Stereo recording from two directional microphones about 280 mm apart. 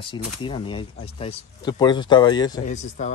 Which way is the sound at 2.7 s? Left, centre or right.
Left.